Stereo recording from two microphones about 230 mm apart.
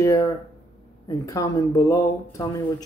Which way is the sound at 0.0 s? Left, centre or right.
Centre.